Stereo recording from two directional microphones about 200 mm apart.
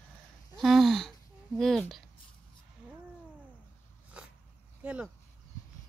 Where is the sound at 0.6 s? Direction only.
Centre (ahead or behind).